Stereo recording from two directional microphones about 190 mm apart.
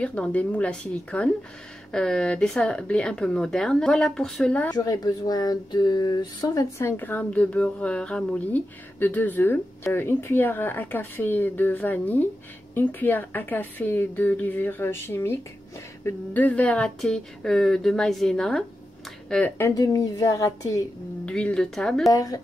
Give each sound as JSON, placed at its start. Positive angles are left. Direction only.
{"t": 0.0, "sound": "speech", "side_deg": 5}
{"t": 4.7, "sound": "speech", "side_deg": 20}
{"t": 19.7, "sound": "speech", "side_deg": 20}
{"t": 21.3, "sound": "speech", "side_deg": 5}
{"t": 22.1, "sound": "speech", "side_deg": 20}